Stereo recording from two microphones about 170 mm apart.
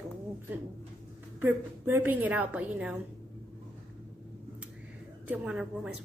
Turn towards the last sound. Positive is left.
turn(degrees=-5)  # may be behind; listen again after turning